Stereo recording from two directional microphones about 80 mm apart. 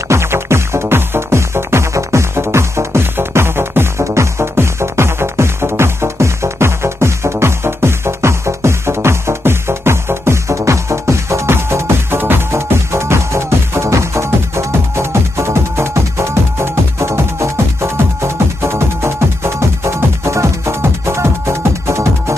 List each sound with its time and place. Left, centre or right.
0.1 s music: right